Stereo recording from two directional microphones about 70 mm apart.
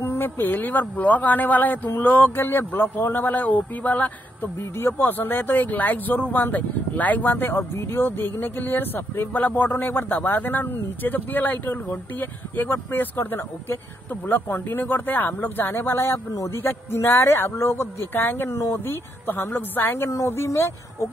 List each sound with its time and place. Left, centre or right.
0.0 s speech: left
4.6 s speech: left